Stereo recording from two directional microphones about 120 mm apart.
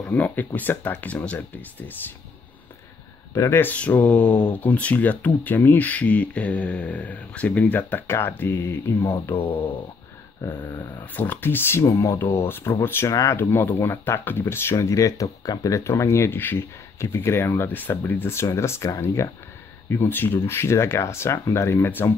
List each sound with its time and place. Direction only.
0.1 s speech: 15° left (ahead or behind)
3.3 s speech: 20° left (ahead or behind)
9.3 s speech: 45° left (ahead or behind)
10.4 s speech: 25° left (ahead or behind)